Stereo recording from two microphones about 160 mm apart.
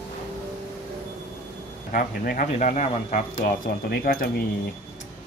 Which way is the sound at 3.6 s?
70° left (ahead or behind).